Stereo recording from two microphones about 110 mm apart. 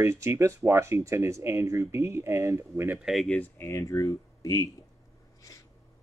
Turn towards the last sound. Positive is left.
turn(degrees=35)  # may be behind; listen again after turning